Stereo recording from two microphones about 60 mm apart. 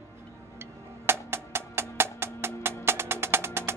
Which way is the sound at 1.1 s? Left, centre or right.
Right.